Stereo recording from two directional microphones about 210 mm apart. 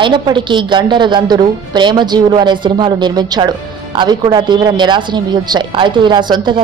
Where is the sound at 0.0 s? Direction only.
20° right (ahead or behind).